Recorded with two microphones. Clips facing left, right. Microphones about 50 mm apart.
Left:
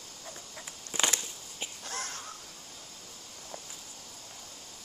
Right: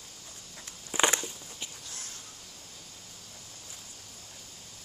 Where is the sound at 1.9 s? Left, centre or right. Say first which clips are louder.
Left 8 dB; left.